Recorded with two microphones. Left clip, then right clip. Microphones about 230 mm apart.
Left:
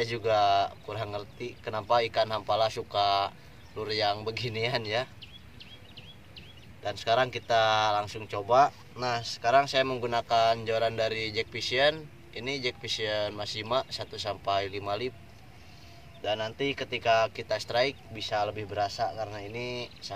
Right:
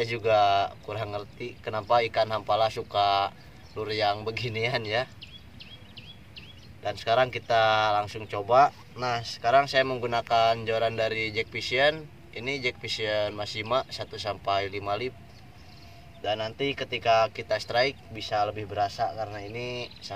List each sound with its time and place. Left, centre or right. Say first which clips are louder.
0.0 s speech: right 3 dB; centre
5.2 s bird: right 2 dB; right
6.8 s speech: right 2 dB; centre
16.2 s speech: right 1 dB; centre